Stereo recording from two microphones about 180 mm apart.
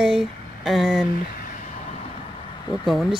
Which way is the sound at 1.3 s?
50° left (ahead or behind).